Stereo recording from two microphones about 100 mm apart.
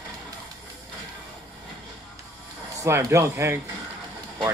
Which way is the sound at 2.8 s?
30° right (ahead or behind).